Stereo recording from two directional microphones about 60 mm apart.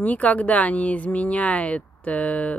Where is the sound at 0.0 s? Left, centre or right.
Left.